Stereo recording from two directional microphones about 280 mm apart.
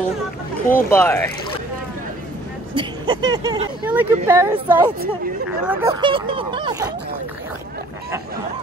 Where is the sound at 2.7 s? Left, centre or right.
Centre.